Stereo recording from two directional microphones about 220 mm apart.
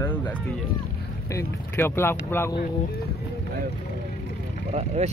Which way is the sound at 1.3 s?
10° left (ahead or behind).